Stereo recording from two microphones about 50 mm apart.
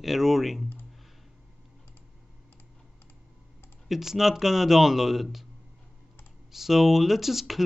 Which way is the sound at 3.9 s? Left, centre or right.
Centre.